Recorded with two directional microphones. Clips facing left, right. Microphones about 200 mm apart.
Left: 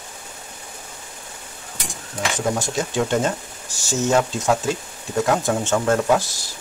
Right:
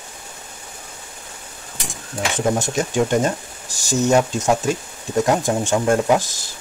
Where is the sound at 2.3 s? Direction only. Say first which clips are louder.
Right 3 dB; 20° right (ahead or behind).